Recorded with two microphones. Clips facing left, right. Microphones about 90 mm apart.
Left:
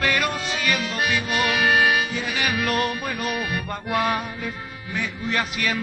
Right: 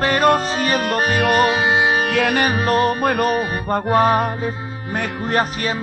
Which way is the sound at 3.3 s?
35° right (ahead or behind).